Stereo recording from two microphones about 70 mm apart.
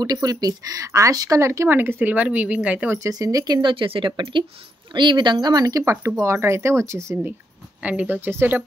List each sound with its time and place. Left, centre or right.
0.0 s speech: right; by 2.9 s centre
3.0 s speech: right
4.9 s speech: right
5.9 s speech: right
7.8 s speech: centre
8.2 s speech: right